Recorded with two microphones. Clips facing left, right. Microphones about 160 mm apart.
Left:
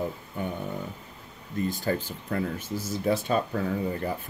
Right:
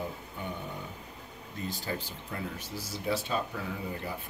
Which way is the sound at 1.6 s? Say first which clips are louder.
Left 7 dB; 50° left (ahead or behind).